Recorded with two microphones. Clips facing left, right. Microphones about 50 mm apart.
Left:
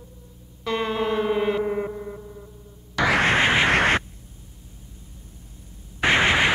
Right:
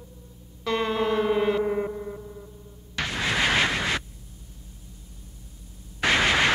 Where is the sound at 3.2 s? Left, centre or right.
Left.